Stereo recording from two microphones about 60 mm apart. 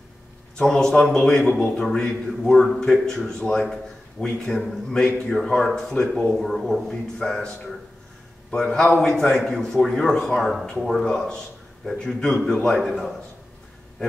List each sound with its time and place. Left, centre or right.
0.6 s speech: centre
8.5 s speech: centre